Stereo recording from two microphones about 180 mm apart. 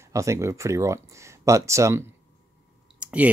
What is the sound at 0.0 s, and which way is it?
Speech, 15° right (ahead or behind).